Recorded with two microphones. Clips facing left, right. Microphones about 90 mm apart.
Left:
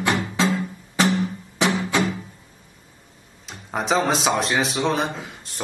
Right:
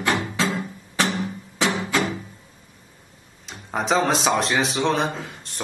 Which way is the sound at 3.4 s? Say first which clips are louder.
Even; centre (ahead or behind).